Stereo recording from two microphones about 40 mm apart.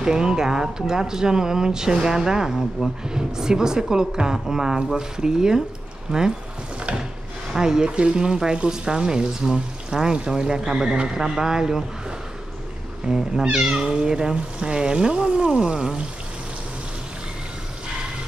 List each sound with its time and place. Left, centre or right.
0.0 s speech: centre
6.9 s wood: right
7.5 s speech: centre
7.9 s speech: right
13.1 s speech: centre